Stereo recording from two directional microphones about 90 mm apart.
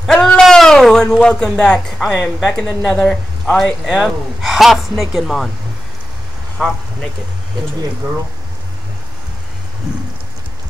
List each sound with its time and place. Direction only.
0.1 s a sound: 5° left (ahead or behind)
2.0 s speech: centre (ahead or behind)
3.8 s a woman's voice: centre (ahead or behind)
6.6 s speech: 5° left (ahead or behind)